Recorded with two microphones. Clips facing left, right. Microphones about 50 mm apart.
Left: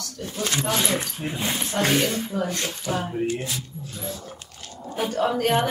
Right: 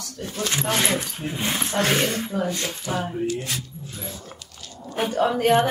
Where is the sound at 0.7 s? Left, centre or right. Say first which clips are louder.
Right 2 dB; right.